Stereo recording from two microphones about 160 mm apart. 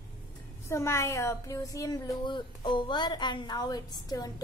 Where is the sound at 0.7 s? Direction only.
15° left (ahead or behind).